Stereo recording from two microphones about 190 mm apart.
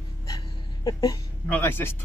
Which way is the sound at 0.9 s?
20° left (ahead or behind).